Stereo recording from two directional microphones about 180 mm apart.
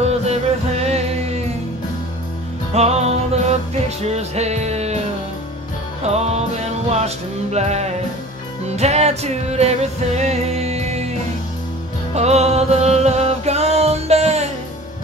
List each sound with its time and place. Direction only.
0.3 s music: 35° right (ahead or behind)
2.7 s music: 35° right (ahead or behind)
6.0 s music: 35° right (ahead or behind)
7.5 s music: 40° right (ahead or behind)
12.1 s music: 35° right (ahead or behind)